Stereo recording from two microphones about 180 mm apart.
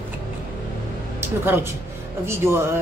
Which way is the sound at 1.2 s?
10° right (ahead or behind).